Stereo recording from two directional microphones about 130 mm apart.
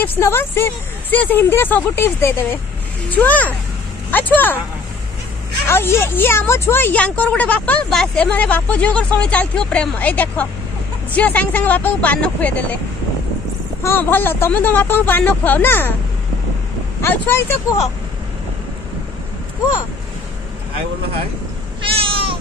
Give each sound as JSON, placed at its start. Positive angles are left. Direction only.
{"t": 0.0, "sound": "speech", "side_deg": 15}
{"t": 5.7, "sound": "speech", "side_deg": 20}
{"t": 13.8, "sound": "speech", "side_deg": 15}
{"t": 17.0, "sound": "speech", "side_deg": 15}
{"t": 21.8, "sound": "cat", "side_deg": -45}